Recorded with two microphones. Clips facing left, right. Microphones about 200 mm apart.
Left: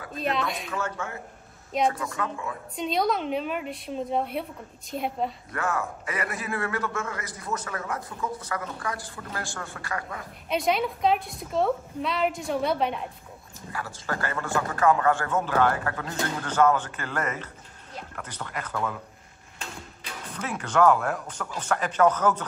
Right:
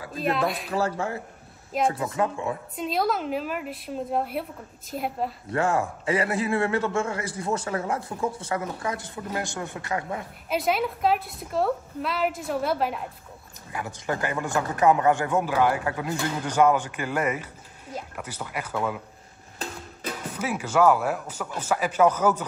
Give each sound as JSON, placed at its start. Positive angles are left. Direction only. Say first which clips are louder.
{"t": 0.2, "sound": "a woman's voice", "louder": "right 3 dB", "side_deg": 0}
{"t": 0.7, "sound": "a man's voice", "louder": "right 5 dB", "side_deg": -35}
{"t": 2.7, "sound": "a woman's voice", "louder": "left 2 dB", "side_deg": -5}
{"t": 5.5, "sound": "a man's voice", "louder": "right 5 dB", "side_deg": -30}
{"t": 10.5, "sound": "a woman's voice", "louder": "even", "side_deg": -5}
{"t": 13.7, "sound": "a man's voice", "louder": "right 3 dB", "side_deg": -20}
{"t": 19.6, "sound": "music", "louder": "right 7 dB", "side_deg": -45}
{"t": 20.3, "sound": "a man's voice", "louder": "right 1 dB", "side_deg": -10}